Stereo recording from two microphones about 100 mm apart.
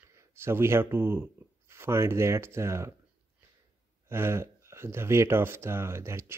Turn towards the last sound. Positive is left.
turn(degrees=-25)  # may be behind; listen again after turning